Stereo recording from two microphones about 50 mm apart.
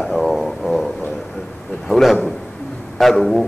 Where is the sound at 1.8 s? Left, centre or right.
Centre.